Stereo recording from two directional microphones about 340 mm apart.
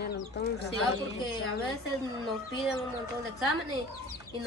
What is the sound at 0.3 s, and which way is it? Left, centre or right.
Speech, left.